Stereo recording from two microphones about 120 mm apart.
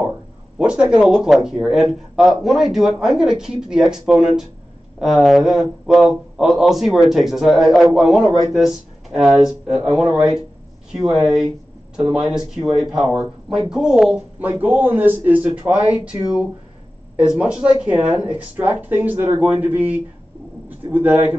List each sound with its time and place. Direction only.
0.6 s a man's voice: 10° right (ahead or behind)
14.4 s speech: 15° right (ahead or behind)
17.4 s speech: 10° right (ahead or behind)